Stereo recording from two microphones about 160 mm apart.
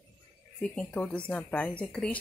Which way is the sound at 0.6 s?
10° left (ahead or behind).